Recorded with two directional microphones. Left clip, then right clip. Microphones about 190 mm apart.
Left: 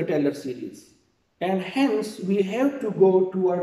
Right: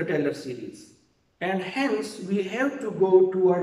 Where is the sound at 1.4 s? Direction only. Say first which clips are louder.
Left 3 dB; 20° left (ahead or behind).